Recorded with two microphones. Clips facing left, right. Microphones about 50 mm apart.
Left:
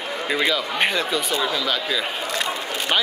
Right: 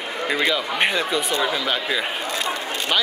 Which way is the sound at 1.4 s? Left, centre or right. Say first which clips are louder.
Right 1 dB; centre.